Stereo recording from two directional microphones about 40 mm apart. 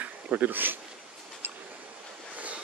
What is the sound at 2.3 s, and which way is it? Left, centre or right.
Waves, right.